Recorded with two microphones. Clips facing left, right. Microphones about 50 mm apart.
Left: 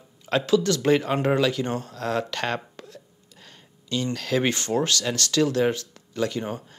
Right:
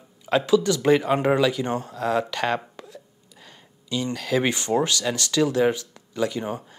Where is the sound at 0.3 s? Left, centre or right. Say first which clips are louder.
Right 2 dB; centre.